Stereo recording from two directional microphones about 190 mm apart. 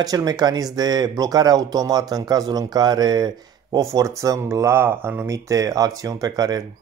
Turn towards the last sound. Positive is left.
turn(degrees=-20)  # may be behind; listen again after turning